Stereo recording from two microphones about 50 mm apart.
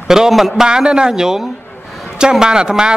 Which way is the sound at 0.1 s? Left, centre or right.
Centre.